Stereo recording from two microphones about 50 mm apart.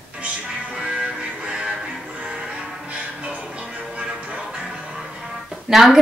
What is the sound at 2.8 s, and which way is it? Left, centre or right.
Music, right.